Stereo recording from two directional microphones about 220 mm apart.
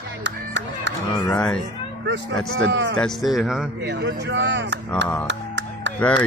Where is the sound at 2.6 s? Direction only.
55° right (ahead or behind).